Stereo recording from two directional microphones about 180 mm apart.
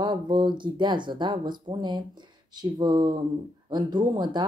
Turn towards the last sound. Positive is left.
turn(degrees=-25)  # may be behind; listen again after turning